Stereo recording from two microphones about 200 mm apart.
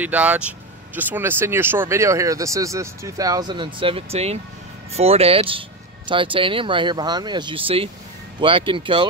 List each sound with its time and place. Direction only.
0.0 s speech: 5° right (ahead or behind); by 9.0 s 25° right (ahead or behind)